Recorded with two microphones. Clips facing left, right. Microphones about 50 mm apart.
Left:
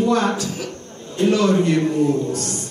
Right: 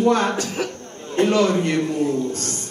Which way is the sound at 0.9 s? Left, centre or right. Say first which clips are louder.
Right 1 dB; right.